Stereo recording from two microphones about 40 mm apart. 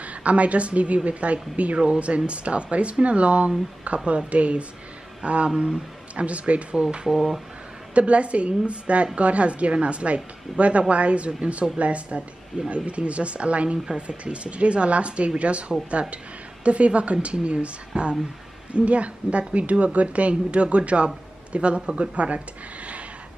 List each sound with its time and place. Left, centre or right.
0.0 s speech: right
7.1 s speech: centre
7.9 s speech: right